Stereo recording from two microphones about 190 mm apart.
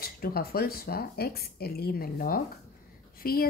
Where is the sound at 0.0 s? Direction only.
55° left (ahead or behind).